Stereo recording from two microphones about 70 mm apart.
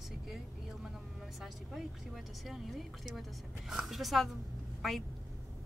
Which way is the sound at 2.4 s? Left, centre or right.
Centre.